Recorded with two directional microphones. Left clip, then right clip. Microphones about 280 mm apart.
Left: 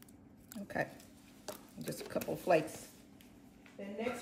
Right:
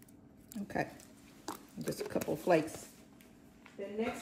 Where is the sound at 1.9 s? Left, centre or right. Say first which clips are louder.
Right 3 dB; right.